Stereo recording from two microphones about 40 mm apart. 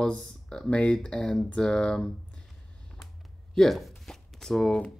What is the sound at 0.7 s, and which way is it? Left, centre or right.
Speech, left.